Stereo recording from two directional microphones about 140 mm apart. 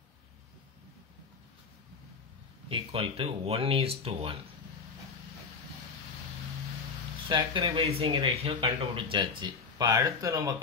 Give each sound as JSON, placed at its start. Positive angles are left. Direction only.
{"t": 2.7, "sound": "speech", "side_deg": -45}
{"t": 7.2, "sound": "speech", "side_deg": -35}